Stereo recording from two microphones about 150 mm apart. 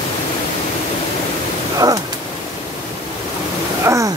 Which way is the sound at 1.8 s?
25° right (ahead or behind).